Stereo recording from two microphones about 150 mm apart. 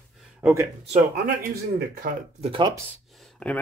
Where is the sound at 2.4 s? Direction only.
35° right (ahead or behind).